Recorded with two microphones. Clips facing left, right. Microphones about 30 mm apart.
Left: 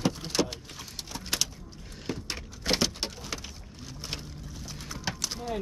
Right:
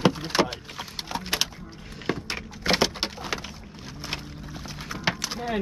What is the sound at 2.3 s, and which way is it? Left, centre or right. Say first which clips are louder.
Typing: right 3 dB; centre.